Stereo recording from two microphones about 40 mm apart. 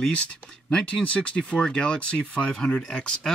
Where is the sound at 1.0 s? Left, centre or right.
Left.